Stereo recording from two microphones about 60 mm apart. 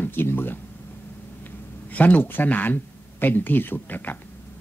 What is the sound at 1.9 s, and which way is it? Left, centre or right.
Speech, left.